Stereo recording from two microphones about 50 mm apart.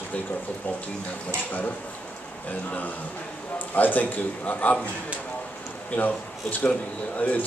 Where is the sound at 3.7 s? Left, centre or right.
Left.